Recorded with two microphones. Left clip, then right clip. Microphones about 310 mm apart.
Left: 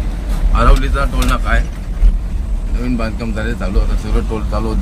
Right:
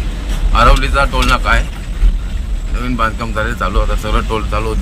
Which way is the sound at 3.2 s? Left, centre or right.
Right.